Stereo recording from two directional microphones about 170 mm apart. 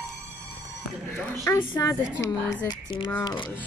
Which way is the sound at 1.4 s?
15° left (ahead or behind).